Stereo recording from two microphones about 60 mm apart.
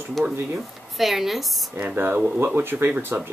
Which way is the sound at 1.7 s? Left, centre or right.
Right.